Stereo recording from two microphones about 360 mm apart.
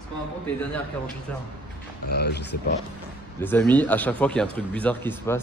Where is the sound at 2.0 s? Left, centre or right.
Left.